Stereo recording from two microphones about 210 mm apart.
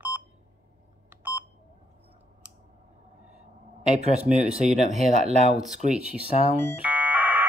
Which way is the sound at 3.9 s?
30° right (ahead or behind).